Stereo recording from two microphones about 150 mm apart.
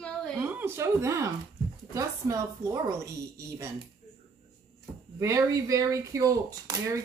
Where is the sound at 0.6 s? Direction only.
15° right (ahead or behind).